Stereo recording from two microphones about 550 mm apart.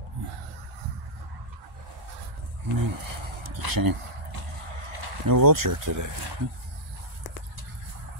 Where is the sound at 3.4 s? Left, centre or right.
Right.